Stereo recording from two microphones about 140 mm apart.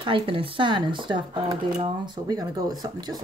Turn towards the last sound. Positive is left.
turn(degrees=-30)  # may be behind; listen again after turning